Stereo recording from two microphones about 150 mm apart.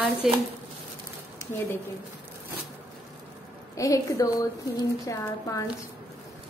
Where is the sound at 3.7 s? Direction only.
20° left (ahead or behind).